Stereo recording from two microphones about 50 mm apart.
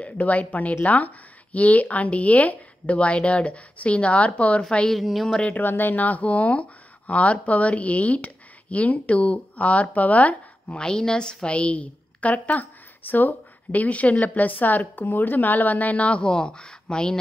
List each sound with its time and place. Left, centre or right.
0.0 s a woman's voice: left
4.9 s speech: centre
5.4 s a woman's voice: left
10.8 s a woman's voice: centre